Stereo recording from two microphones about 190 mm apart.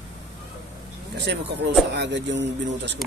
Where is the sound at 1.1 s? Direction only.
65° right (ahead or behind).